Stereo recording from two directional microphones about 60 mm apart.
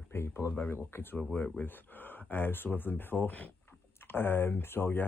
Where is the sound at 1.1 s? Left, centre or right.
Left.